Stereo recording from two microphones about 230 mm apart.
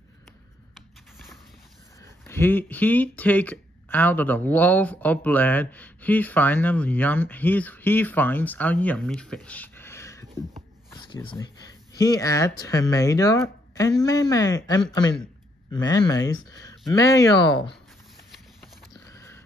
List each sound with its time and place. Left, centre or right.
0.7 s typing: centre
2.0 s speech: centre
19.0 s sniff: centre